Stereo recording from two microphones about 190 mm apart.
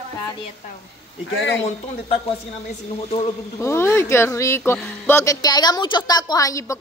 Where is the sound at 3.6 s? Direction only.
15° left (ahead or behind).